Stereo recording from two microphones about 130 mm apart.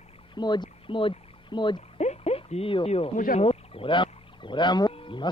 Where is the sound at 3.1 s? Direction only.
90° left.